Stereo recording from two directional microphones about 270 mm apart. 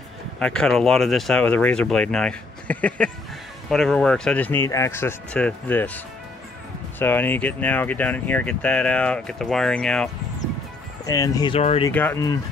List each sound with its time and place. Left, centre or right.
0.4 s speech: centre
7.0 s speech: centre
11.1 s speech: centre
11.9 s speech: centre